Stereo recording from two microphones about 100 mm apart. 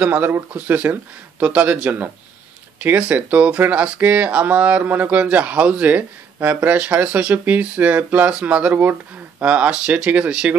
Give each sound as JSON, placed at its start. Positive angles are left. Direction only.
{"t": 0.0, "sound": "speech", "side_deg": -20}